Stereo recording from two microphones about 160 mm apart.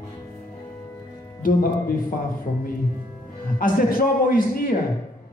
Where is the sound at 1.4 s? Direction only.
60° left (ahead or behind).